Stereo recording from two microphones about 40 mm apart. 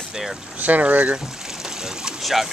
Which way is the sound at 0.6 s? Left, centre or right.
Right.